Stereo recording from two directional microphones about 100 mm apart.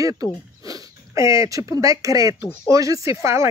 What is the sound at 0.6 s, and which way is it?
Speech, 35° right (ahead or behind).